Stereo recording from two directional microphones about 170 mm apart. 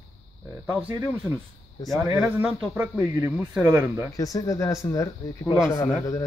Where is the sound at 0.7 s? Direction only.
10° right (ahead or behind).